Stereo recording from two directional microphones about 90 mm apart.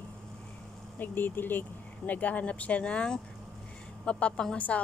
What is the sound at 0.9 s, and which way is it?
Speech, 20° left (ahead or behind).